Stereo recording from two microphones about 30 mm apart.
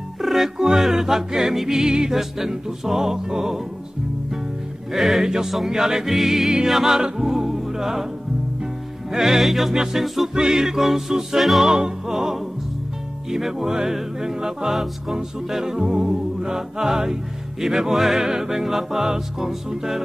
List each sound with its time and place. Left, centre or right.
0.2 s music: centre
1.8 s music: right
2.1 s music: centre
4.9 s music: centre
9.1 s music: centre
11.6 s music: centre